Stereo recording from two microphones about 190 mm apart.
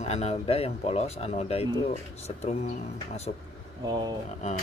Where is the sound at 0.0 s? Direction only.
35° left (ahead or behind).